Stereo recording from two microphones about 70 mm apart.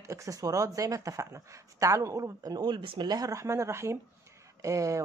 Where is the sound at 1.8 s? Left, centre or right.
Right.